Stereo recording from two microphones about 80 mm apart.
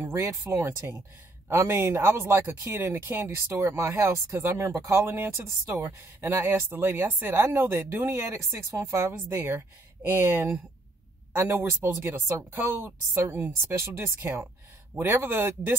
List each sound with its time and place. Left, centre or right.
0.0 s speech: right